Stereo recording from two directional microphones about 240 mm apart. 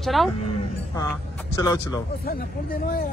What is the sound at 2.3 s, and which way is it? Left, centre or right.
Speech, left.